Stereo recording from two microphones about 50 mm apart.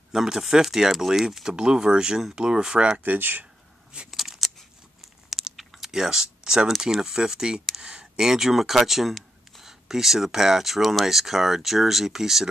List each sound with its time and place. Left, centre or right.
0.1 s speech: centre
3.0 s speech: right
4.1 s scissors: centre
5.0 s a sound: centre
5.9 s speech: centre